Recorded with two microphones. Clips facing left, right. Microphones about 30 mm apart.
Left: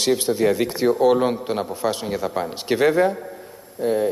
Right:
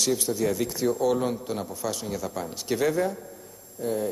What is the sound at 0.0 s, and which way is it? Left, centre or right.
A man's voice, left.